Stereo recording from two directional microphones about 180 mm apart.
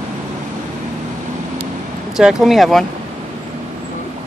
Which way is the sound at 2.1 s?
Centre (ahead or behind).